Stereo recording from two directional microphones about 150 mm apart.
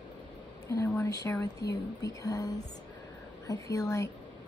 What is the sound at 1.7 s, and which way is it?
Speech, 25° left (ahead or behind).